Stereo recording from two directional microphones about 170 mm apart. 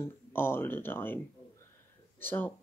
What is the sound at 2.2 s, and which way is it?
Speech, 10° left (ahead or behind).